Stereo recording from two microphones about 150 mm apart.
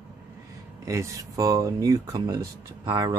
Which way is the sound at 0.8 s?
20° right (ahead or behind).